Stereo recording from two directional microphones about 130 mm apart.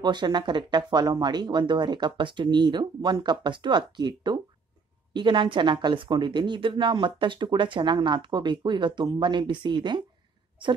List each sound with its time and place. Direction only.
0.0 s speech: 35° right (ahead or behind)